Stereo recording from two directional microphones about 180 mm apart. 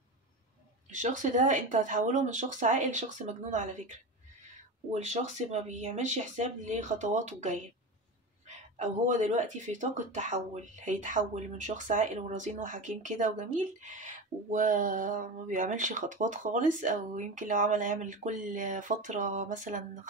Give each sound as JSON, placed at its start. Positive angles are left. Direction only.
{"t": 0.8, "sound": "speech", "side_deg": -45}
{"t": 4.9, "sound": "speech", "side_deg": -40}